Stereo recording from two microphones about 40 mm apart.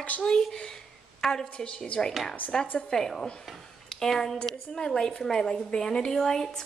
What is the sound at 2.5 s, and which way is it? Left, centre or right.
Speech, centre.